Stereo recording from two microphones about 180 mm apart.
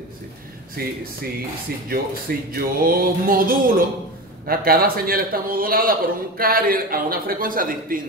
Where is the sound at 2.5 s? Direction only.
55° right (ahead or behind).